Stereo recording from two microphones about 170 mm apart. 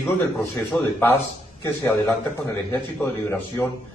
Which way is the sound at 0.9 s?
15° left (ahead or behind).